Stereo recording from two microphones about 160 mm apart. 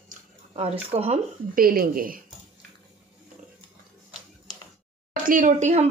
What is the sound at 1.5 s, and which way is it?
Speech, 65° right (ahead or behind).